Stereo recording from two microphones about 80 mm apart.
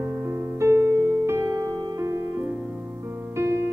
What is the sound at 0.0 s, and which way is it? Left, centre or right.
Music, right.